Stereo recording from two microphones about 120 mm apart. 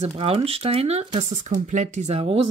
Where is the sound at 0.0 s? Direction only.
55° right (ahead or behind); by 2.1 s 85° right.